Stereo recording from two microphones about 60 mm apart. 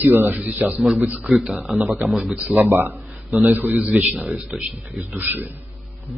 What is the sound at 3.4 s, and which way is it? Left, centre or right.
Speech, right.